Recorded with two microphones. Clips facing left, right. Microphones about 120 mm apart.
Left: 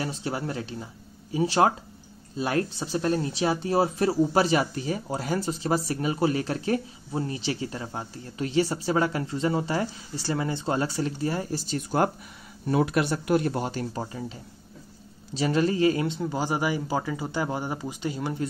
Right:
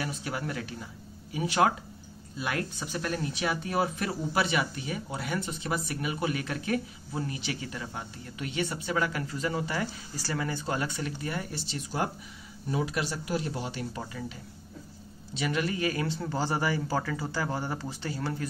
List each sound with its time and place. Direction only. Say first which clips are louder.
0.0 s speech: left 4 dB; 30° left (ahead or behind)
15.3 s speech: left 6 dB; 35° left (ahead or behind); by 18.5 s 20° left (ahead or behind)